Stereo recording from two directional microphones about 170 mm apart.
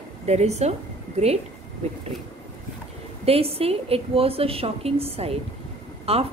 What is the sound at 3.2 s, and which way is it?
A woman's voice, 35° right (ahead or behind).